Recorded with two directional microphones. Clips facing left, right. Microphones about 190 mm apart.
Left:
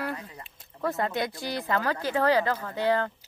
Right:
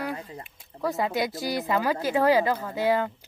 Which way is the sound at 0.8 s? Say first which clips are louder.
Right 2 dB; centre (ahead or behind).